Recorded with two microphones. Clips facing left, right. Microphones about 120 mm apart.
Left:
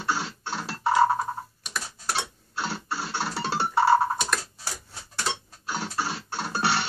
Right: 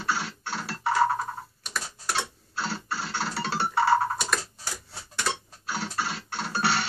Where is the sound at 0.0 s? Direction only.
20° left (ahead or behind).